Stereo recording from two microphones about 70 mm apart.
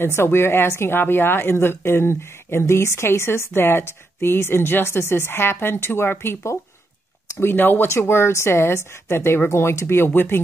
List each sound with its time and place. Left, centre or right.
0.0 s speech: left
7.3 s speech: left
8.1 s speech: left